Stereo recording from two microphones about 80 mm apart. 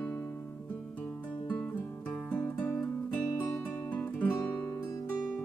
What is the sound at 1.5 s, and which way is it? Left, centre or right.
Music, centre.